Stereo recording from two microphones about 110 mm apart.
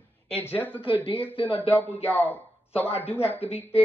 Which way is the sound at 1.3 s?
55° left (ahead or behind).